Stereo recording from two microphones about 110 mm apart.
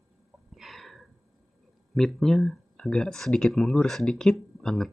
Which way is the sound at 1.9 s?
5° left (ahead or behind).